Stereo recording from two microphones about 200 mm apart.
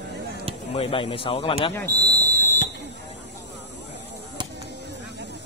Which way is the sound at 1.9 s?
15° right (ahead or behind).